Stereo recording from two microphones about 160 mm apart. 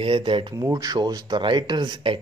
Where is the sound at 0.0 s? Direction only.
30° right (ahead or behind).